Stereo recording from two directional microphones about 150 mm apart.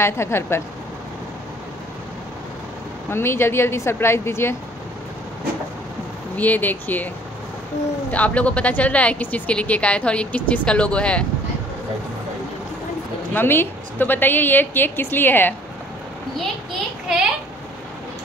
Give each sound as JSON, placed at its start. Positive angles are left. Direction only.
{"t": 0.0, "sound": "speech", "side_deg": 15}
{"t": 3.1, "sound": "speech", "side_deg": 15}
{"t": 6.3, "sound": "speech", "side_deg": 10}
{"t": 8.1, "sound": "speech", "side_deg": 10}
{"t": 13.3, "sound": "speech", "side_deg": 15}